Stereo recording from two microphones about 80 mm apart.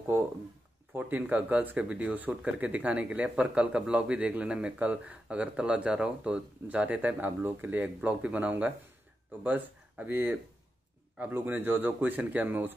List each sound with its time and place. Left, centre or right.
0.9 s speech: right